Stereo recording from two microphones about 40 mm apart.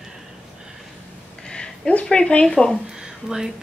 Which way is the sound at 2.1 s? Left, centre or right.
Left.